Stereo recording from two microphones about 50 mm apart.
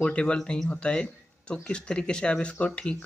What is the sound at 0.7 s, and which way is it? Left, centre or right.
Speech, left.